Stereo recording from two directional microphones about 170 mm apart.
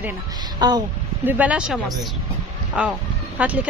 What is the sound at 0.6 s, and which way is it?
Speech, 25° right (ahead or behind).